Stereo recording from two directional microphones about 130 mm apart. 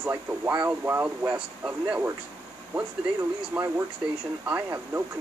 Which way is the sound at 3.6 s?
10° right (ahead or behind).